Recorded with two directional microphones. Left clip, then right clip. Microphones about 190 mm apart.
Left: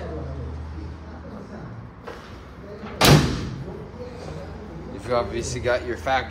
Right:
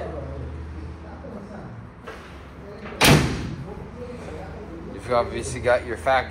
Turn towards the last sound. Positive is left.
turn(degrees=0)  # may be behind; listen again after turning